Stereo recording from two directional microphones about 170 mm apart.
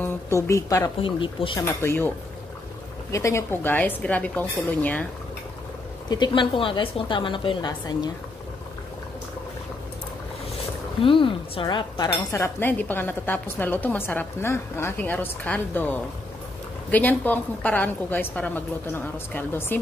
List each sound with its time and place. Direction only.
0.0 s a woman's voice: 15° left (ahead or behind)
1.0 s speech: 30° left (ahead or behind)
1.7 s speech: 15° left (ahead or behind)
6.0 s a woman's voice: 25° left (ahead or behind)
11.0 s a woman's voice: 30° left (ahead or behind)
12.1 s speech: 15° left (ahead or behind)